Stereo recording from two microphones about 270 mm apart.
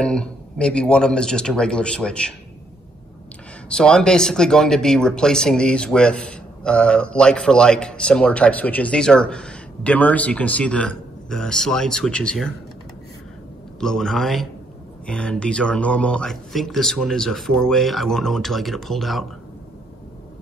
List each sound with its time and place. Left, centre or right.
0.0 s speech: centre
3.6 s speech: centre
13.7 s speech: centre